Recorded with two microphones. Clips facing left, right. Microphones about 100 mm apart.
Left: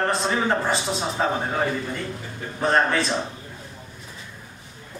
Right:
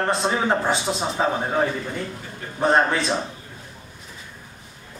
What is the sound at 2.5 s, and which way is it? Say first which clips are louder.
Speech: right 2 dB; 20° right (ahead or behind).